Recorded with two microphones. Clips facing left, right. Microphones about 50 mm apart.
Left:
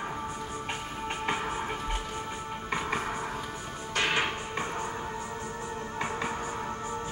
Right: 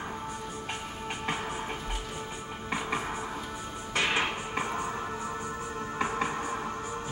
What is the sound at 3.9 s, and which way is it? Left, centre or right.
Music, centre.